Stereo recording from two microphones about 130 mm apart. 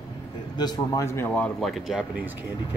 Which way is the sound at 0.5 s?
30° left (ahead or behind).